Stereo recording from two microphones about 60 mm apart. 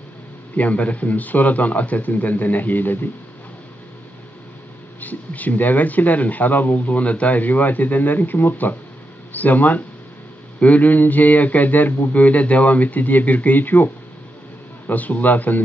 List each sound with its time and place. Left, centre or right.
0.6 s speech: left
5.0 s speech: left
14.9 s speech: left